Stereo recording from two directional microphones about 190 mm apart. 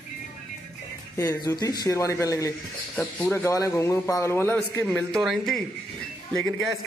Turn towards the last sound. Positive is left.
turn(degrees=5)  # may be behind; listen again after turning